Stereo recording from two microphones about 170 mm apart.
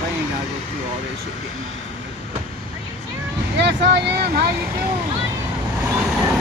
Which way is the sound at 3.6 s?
85° right.